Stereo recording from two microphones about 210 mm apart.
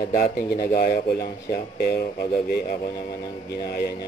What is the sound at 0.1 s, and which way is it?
Speech, 40° left (ahead or behind).